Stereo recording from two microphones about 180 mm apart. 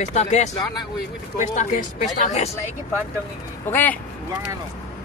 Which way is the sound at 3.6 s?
10° left (ahead or behind).